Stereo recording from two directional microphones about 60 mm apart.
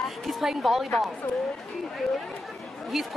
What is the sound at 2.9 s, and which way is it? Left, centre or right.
Speech, centre.